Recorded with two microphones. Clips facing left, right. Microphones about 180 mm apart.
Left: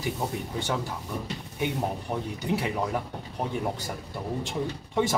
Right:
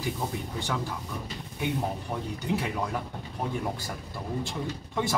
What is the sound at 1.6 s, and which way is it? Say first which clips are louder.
Speech: left 1 dB; 15° left (ahead or behind).